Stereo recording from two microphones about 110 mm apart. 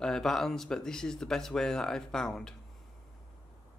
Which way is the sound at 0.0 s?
5° left (ahead or behind).